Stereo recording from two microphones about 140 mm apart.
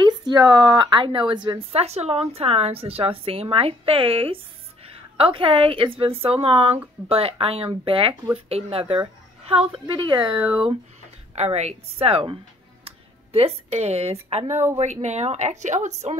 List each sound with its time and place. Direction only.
0.0 s a woman's voice: 30° right (ahead or behind)
1.8 s a woman's voice: 50° right (ahead or behind)
11.3 s a woman's voice: 50° right (ahead or behind)
12.8 s a sound: 45° right (ahead or behind)
14.8 s a woman's voice: 55° right (ahead or behind)